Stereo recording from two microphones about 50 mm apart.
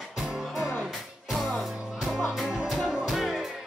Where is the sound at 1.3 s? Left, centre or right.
Centre.